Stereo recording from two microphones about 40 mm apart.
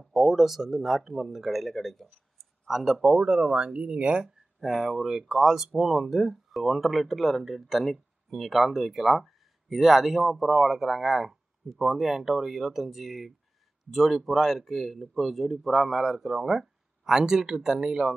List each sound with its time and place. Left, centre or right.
0.1 s speech: centre
2.7 s speech: centre
3.0 s speech: right
4.1 s speech: centre